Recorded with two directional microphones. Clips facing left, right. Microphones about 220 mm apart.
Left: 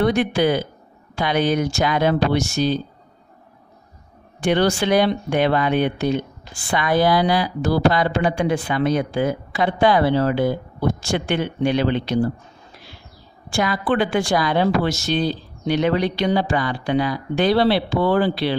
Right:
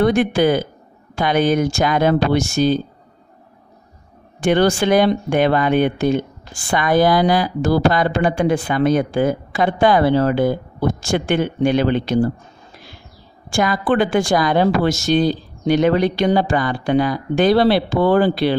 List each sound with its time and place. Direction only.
0.0 s speech: 50° right (ahead or behind)
4.4 s speech: 50° right (ahead or behind)
13.5 s speech: 45° right (ahead or behind)